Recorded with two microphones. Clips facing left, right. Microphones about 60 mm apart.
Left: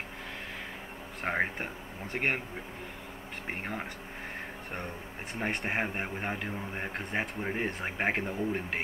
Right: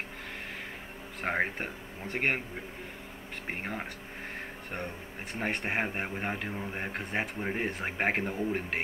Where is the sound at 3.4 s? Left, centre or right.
Centre.